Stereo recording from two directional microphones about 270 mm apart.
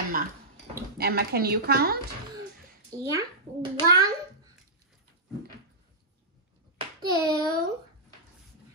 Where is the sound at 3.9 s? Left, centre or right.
Centre.